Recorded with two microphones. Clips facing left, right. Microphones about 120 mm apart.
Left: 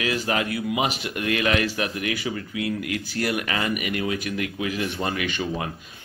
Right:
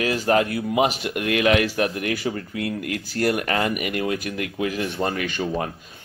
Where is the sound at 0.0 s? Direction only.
45° right (ahead or behind).